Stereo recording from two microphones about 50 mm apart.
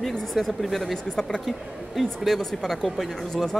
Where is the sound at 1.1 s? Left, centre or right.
Centre.